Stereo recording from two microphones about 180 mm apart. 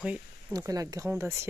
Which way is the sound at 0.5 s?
20° right (ahead or behind).